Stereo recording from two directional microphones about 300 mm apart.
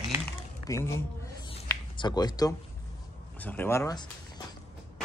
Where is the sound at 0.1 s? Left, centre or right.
Centre.